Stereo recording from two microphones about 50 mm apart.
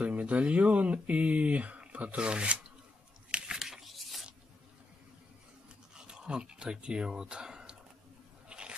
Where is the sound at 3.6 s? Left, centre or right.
Centre.